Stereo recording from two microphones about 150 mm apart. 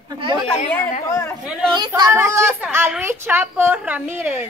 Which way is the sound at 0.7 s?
15° left (ahead or behind).